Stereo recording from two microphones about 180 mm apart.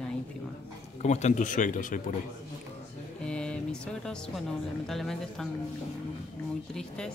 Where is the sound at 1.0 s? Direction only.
40° left (ahead or behind).